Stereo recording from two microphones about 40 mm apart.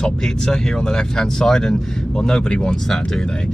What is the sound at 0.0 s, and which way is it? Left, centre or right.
Speech, centre.